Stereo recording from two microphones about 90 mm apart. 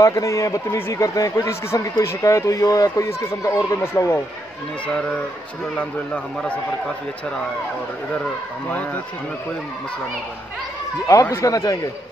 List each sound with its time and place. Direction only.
0.0 s speech: 35° left (ahead or behind)
4.8 s a man's voice: 10° left (ahead or behind)
8.6 s speech: 20° left (ahead or behind)
11.1 s speech: 35° left (ahead or behind)